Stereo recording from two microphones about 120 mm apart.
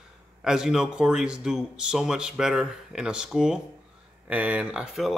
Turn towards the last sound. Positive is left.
turn(degrees=-5)  # may be behind; listen again after turning